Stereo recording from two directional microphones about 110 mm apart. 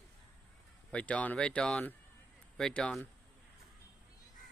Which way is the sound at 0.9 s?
10° left (ahead or behind).